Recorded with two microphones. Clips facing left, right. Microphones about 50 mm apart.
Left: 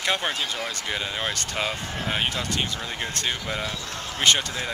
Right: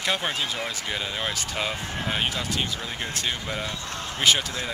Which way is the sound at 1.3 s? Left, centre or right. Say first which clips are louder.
Even; centre.